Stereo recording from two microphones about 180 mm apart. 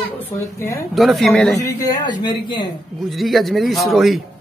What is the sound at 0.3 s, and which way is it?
Speech, 15° left (ahead or behind).